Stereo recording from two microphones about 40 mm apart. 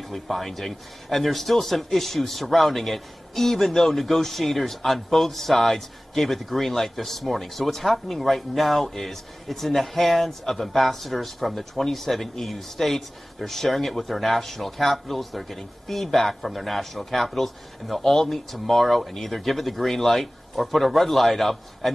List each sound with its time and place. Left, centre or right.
0.0 s a man's voice: centre